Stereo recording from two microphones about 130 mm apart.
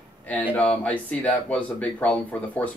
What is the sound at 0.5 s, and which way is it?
Speech, 10° left (ahead or behind).